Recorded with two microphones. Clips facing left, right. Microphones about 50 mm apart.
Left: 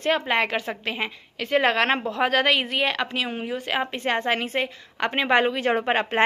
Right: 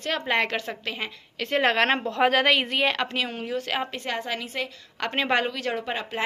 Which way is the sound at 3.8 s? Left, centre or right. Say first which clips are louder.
Left 5 dB; left.